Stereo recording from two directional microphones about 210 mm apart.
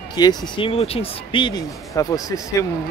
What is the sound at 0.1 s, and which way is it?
Speech, 20° left (ahead or behind).